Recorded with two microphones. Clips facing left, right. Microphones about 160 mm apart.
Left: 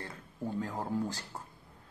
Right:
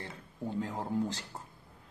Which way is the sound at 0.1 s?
20° right (ahead or behind).